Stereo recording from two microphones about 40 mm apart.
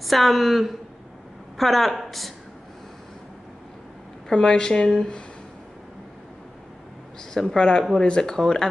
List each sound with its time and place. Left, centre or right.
0.0 s a woman's voice: centre
4.3 s a woman's voice: left
7.4 s a woman's voice: left